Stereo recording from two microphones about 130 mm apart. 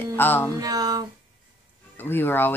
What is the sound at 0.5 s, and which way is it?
Speech, 30° right (ahead or behind).